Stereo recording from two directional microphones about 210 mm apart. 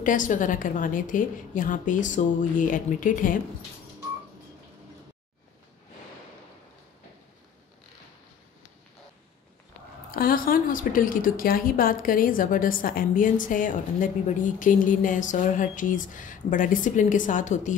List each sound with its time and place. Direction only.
0.0 s a woman's voice: 40° left (ahead or behind)
10.1 s a woman's voice: 45° left (ahead or behind)